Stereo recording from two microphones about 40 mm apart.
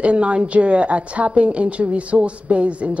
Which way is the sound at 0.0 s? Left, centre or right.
Right.